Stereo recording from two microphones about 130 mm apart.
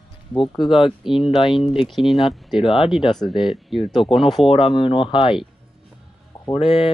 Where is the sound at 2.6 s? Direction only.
40° left (ahead or behind).